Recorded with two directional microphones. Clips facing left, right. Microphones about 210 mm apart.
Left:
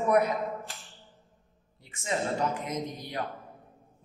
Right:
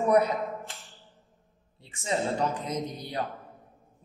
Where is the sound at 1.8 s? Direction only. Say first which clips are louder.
Right 2 dB; 30° right (ahead or behind).